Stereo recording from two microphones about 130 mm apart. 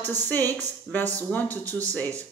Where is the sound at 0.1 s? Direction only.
15° left (ahead or behind).